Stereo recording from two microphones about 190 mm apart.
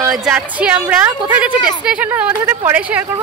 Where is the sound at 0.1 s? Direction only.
5° right (ahead or behind).